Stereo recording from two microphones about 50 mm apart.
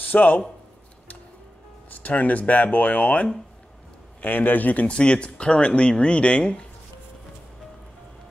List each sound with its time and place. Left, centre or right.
0.0 s speech: left
1.9 s speech: left
4.8 s speech: left